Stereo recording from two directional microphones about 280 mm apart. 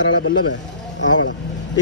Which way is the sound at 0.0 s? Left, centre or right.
Left.